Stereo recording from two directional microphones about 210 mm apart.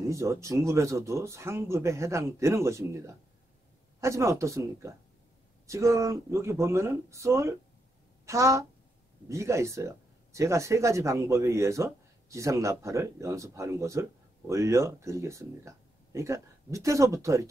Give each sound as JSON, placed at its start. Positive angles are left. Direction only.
{"t": 0.0, "sound": "speech", "side_deg": -15}